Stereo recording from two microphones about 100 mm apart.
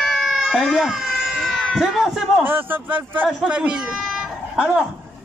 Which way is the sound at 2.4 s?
20° right (ahead or behind).